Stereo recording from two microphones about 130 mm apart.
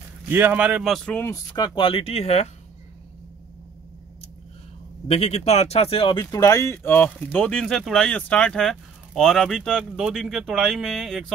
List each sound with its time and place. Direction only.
0.3 s speech: 15° right (ahead or behind)
0.9 s speech: 10° left (ahead or behind)
1.2 s speech: 25° left (ahead or behind)
1.8 s speech: 45° left (ahead or behind)
5.0 s speech: 55° left (ahead or behind)
6.3 s speech: 25° left (ahead or behind); by 11.3 s centre (ahead or behind)